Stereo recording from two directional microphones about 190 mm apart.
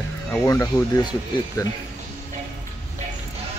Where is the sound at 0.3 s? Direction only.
15° left (ahead or behind).